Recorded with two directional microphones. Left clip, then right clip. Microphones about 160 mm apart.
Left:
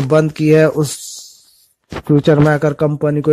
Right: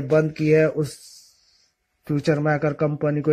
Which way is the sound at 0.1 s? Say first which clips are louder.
Left 6 dB; 35° left (ahead or behind).